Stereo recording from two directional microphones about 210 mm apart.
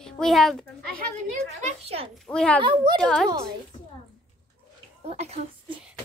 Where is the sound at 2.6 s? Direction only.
20° right (ahead or behind).